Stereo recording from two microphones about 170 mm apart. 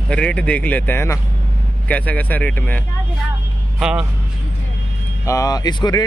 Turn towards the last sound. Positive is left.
turn(degrees=25)  # may be behind; listen again after turning